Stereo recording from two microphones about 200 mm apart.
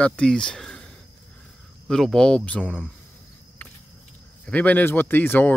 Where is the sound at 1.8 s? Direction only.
Centre (ahead or behind).